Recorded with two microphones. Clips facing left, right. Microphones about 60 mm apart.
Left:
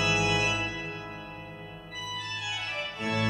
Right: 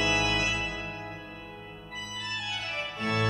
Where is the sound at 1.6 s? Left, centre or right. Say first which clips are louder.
Even; centre.